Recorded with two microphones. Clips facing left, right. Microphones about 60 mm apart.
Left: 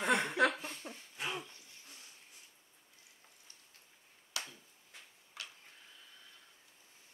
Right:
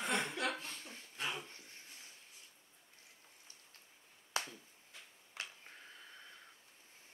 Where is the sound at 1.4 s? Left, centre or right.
Right.